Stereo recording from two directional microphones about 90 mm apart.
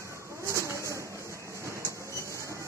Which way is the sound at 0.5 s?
30° right (ahead or behind).